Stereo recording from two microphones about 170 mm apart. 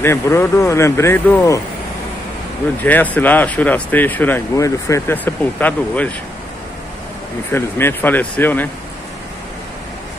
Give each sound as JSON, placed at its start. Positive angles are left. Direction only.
{"t": 0.0, "sound": "speech", "side_deg": 15}
{"t": 2.8, "sound": "speech", "side_deg": 10}
{"t": 7.5, "sound": "speech", "side_deg": 15}